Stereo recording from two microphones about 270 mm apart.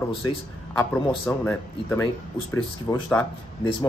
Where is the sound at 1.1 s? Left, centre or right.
Centre.